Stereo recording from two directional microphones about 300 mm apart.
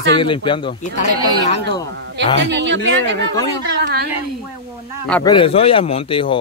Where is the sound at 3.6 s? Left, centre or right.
Right.